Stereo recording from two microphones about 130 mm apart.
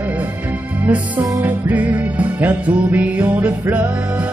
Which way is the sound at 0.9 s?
15° right (ahead or behind).